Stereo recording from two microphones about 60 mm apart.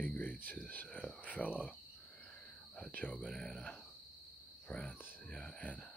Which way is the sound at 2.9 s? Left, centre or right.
Left.